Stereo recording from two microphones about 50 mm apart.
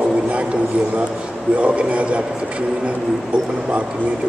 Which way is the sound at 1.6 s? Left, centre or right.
Right.